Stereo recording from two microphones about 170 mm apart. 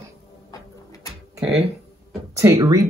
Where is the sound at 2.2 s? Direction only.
20° right (ahead or behind).